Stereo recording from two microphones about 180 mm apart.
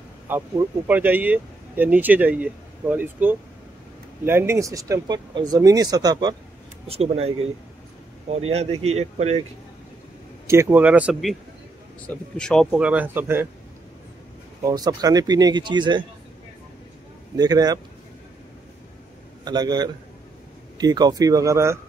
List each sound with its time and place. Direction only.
0.3 s speech: 10° right (ahead or behind)
6.9 s speech: 35° right (ahead or behind)
10.4 s speech: 15° right (ahead or behind); by 12.6 s 5° left (ahead or behind)
12.7 s speech: 10° right (ahead or behind)
14.6 s speech: 20° right (ahead or behind)
17.4 s speech: 20° right (ahead or behind)
19.4 s speech: 25° right (ahead or behind)